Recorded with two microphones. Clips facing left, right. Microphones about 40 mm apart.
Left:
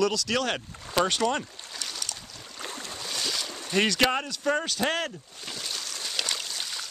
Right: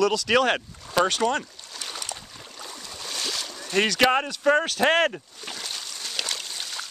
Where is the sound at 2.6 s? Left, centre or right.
Left.